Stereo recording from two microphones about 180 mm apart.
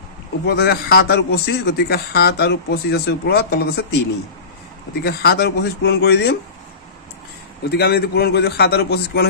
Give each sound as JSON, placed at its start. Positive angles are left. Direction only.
{"t": 0.5, "sound": "a man's voice", "side_deg": 60}
{"t": 5.0, "sound": "a man's voice", "side_deg": 65}
{"t": 7.7, "sound": "a man's voice", "side_deg": 65}